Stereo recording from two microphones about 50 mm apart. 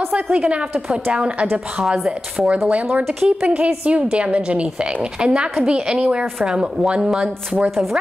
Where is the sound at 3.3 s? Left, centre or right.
Right.